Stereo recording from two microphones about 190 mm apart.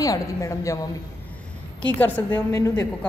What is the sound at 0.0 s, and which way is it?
Speech, 15° left (ahead or behind).